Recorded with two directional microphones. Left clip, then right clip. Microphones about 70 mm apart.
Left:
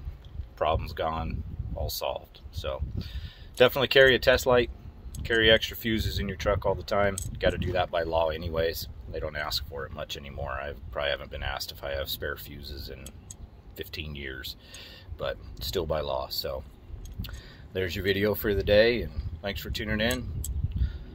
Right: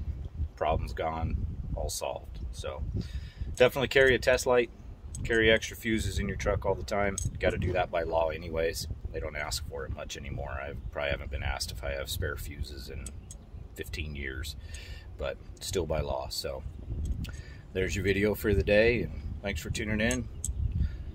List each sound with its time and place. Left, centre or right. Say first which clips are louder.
0.6 s speech: left 3 dB; centre
2.1 s speech: left 5 dB; centre
3.6 s speech: left 4 dB; right
17.7 s speech: left 1 dB; right